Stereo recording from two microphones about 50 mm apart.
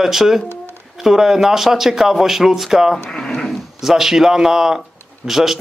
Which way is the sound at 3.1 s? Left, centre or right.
Centre.